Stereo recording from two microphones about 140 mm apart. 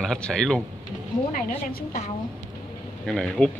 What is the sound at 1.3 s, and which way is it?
Speech, 90° left.